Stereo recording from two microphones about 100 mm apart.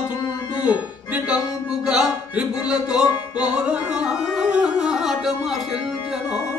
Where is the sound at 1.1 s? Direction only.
10° right (ahead or behind).